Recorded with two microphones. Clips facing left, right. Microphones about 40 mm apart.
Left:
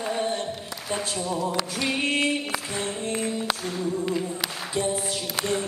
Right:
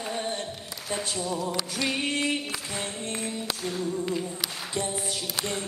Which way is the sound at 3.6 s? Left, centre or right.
Centre.